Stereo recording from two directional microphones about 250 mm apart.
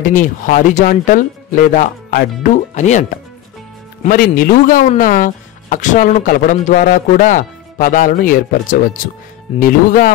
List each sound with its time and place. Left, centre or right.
0.0 s speech: left